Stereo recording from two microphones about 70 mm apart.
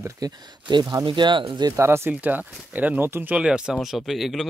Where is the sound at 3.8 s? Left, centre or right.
Centre.